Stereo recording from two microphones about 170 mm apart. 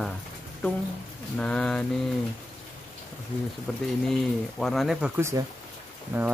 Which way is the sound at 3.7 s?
5° left (ahead or behind).